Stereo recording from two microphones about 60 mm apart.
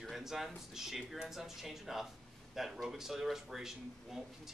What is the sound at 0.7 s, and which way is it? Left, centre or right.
Speech, centre.